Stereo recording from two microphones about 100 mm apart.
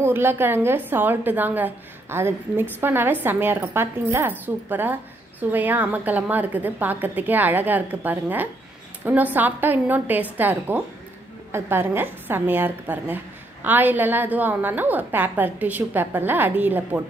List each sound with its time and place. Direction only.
0.0 s a woman's voice: 20° right (ahead or behind)